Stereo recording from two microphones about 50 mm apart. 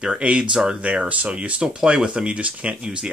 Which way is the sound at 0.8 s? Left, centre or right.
Right.